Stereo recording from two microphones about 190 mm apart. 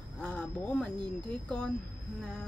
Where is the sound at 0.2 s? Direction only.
5° left (ahead or behind).